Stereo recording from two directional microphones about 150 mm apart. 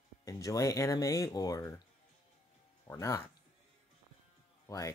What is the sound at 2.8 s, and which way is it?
Speech, 20° left (ahead or behind).